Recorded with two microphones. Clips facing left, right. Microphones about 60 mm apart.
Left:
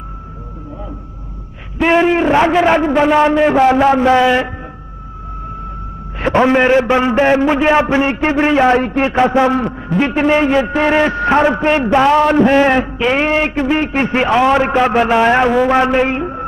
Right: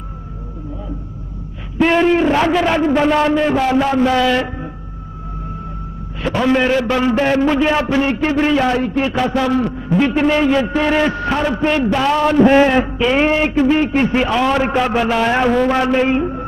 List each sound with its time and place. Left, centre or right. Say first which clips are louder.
1.9 s a man's voice: left 2 dB; centre
3.4 s a man's voice: left 5 dB; left
6.1 s a man's voice: left 4 dB; left
11.3 s a man's voice: left 6 dB; left